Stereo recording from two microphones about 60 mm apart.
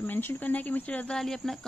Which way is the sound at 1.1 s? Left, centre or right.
Centre.